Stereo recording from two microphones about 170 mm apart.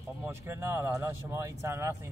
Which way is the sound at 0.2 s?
15° right (ahead or behind).